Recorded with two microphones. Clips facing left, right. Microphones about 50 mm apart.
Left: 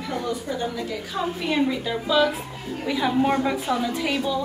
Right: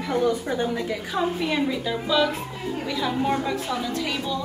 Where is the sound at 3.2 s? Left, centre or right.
Left.